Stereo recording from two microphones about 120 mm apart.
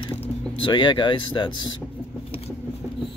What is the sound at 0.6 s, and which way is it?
Speech, 40° left (ahead or behind).